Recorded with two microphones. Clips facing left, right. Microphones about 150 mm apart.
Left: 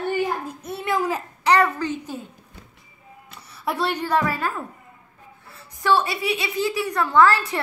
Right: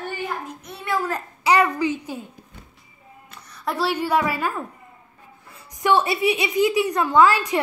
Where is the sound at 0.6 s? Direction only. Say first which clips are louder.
Left 2 dB; 25° left (ahead or behind).